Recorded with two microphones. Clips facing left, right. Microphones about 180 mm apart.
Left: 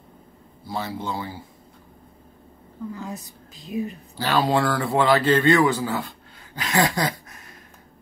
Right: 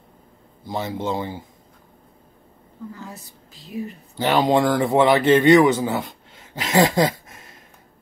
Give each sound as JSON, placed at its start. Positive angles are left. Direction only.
{"t": 0.7, "sound": "a man's voice", "side_deg": -20}
{"t": 3.0, "sound": "a woman's voice", "side_deg": 15}
{"t": 4.2, "sound": "speech", "side_deg": -20}